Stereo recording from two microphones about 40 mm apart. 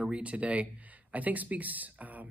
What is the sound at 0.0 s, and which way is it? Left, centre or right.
Speech, right.